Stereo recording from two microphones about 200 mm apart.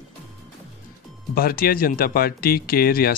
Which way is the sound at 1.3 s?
50° left (ahead or behind).